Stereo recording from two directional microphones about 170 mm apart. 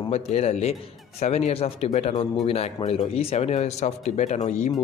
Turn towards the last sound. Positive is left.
turn(degrees=45)  # may be behind; listen again after turning